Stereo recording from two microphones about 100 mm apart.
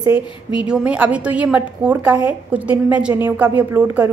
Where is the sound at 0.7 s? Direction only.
15° right (ahead or behind).